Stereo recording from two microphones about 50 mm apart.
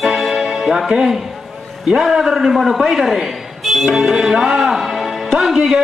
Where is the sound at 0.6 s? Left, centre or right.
Centre.